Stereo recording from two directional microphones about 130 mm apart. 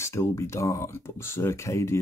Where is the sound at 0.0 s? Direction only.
20° left (ahead or behind).